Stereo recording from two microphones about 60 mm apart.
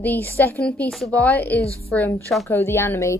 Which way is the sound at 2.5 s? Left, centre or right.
Left.